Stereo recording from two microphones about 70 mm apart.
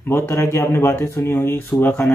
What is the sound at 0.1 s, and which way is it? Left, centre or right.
Speech, left.